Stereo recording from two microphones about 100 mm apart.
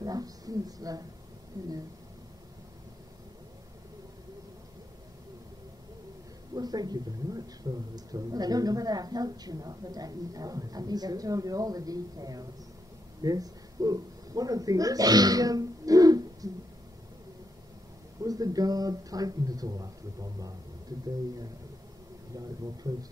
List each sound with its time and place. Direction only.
0.0 s speech: 40° right (ahead or behind)
6.5 s speech: 40° right (ahead or behind)
18.2 s speech: 40° right (ahead or behind)
22.3 s speech: 35° right (ahead or behind)